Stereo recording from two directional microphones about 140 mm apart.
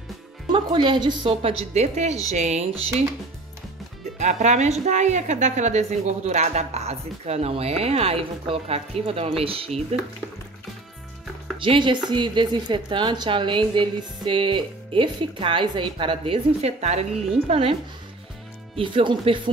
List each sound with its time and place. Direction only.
0.5 s a woman's voice: 35° right (ahead or behind)
1.7 s a woman's voice: 55° right (ahead or behind)
4.2 s a woman's voice: 55° right (ahead or behind)
11.5 s a woman's voice: 40° right (ahead or behind)
16.6 s a woman's voice: 50° right (ahead or behind)
18.8 s a woman's voice: 40° right (ahead or behind)